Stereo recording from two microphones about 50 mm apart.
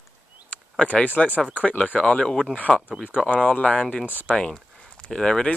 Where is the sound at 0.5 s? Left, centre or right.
Left.